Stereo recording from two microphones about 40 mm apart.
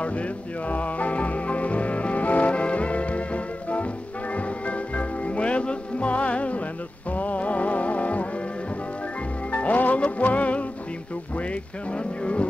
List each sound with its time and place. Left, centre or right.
0.0 s music: left
9.5 s music: left
11.3 s speech: left